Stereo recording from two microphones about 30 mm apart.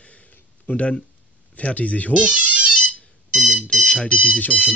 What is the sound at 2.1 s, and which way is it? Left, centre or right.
Speech, right.